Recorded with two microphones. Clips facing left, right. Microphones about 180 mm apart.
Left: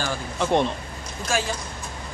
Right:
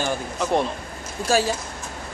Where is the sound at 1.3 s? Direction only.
35° right (ahead or behind).